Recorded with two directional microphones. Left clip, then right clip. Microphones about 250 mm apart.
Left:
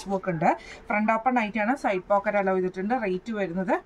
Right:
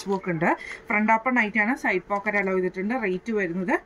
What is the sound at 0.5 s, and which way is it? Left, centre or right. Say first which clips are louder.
Speech: even; centre.